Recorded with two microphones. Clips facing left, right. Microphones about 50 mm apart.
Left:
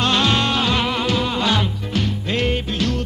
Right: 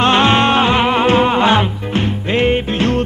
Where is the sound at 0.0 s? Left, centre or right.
Right.